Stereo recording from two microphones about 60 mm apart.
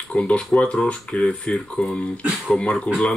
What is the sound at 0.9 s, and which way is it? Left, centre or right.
Speech, centre.